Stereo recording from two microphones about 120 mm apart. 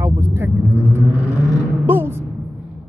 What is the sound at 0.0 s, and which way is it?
Vehicle, 20° right (ahead or behind).